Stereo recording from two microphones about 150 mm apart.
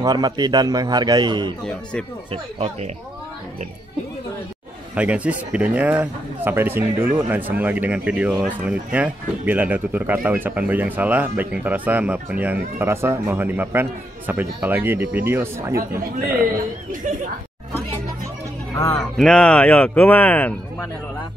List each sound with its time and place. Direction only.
0.0 s a man's voice: 25° right (ahead or behind)
1.6 s speech: 5° left (ahead or behind)
2.3 s speech: 40° right (ahead or behind)
4.9 s speech: 10° right (ahead or behind)
18.9 s speech: 5° left (ahead or behind)